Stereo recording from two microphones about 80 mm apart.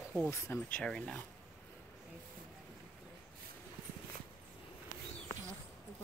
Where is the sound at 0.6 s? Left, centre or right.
Centre.